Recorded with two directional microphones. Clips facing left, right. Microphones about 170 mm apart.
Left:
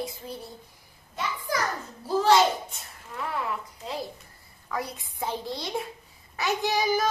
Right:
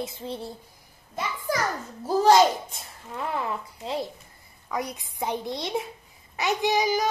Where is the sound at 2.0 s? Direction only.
40° right (ahead or behind).